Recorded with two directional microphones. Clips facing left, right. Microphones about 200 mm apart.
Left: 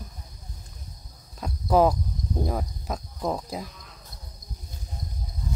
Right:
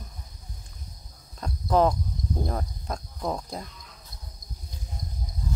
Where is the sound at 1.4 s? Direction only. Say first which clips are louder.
Left 2 dB; 10° left (ahead or behind).